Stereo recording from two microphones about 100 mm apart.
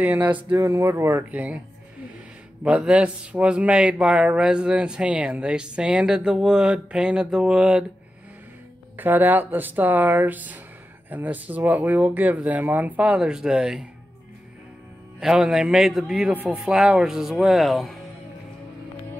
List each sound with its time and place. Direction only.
0.0 s a man's voice: 15° right (ahead or behind)
0.6 s speech: 25° right (ahead or behind)
1.3 s a man's voice: 15° right (ahead or behind)
2.6 s a man's voice: 10° right (ahead or behind)
8.9 s a man's voice: 20° right (ahead or behind)
15.1 s speech: 5° right (ahead or behind)